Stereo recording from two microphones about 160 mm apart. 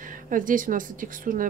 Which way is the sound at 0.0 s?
60° right (ahead or behind).